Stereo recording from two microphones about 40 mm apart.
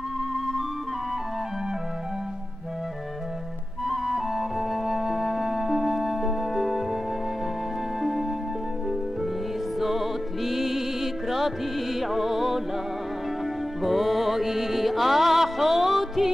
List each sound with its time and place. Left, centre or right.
3.8 s music: centre
8.0 s music: centre
9.8 s music: centre
13.8 s music: centre